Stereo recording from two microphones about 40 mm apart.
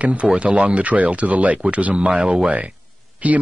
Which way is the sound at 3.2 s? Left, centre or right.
Right.